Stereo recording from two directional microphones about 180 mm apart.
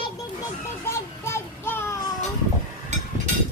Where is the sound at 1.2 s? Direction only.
15° left (ahead or behind).